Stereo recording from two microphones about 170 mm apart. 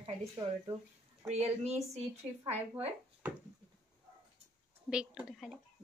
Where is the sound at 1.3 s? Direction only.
40° right (ahead or behind).